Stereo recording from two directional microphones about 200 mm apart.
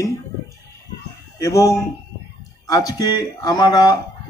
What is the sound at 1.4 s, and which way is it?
Speech, 15° left (ahead or behind).